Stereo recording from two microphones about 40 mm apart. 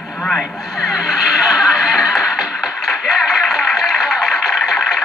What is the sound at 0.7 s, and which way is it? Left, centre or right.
Music, centre.